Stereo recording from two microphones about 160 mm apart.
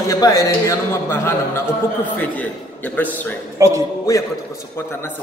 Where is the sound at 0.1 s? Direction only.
20° left (ahead or behind).